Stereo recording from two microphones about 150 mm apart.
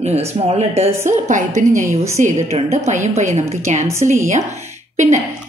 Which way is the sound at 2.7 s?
50° right (ahead or behind).